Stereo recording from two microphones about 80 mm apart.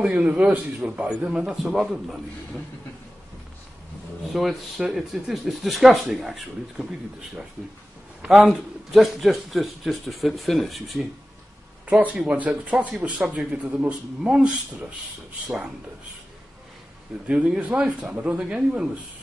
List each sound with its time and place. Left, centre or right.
0.0 s a man's voice: centre
4.3 s speech: centre
8.2 s speech: centre
12.0 s a man's voice: centre
17.3 s a man's voice: centre